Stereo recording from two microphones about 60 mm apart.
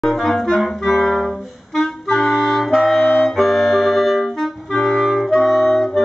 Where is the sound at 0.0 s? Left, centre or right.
Centre.